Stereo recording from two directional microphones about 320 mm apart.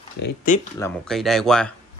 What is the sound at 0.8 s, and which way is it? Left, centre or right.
Speech, centre.